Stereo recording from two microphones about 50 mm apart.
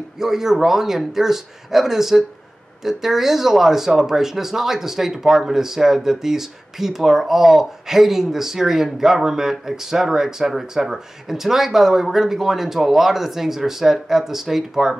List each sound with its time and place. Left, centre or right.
0.2 s speech: centre